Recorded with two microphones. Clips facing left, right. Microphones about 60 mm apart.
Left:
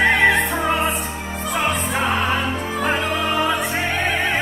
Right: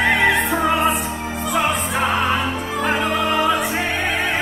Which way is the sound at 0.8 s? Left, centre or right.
Right.